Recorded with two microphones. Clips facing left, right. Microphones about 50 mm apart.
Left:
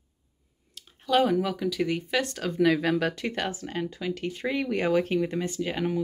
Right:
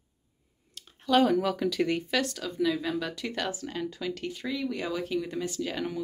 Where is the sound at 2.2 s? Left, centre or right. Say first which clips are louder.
Left 3 dB; left.